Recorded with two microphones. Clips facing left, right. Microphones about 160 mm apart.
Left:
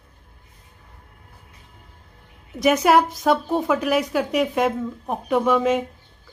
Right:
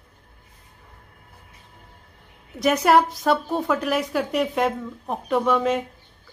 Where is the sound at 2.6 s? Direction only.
5° left (ahead or behind).